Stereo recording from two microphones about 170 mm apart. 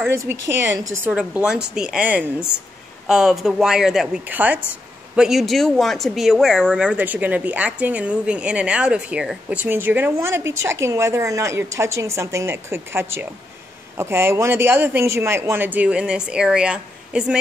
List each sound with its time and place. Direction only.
0.0 s a woman's voice: 15° right (ahead or behind)